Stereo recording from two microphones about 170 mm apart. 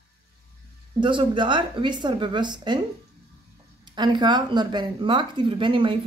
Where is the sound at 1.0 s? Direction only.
30° right (ahead or behind).